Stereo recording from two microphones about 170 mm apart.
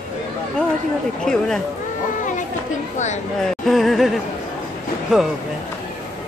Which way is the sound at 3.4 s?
Centre (ahead or behind).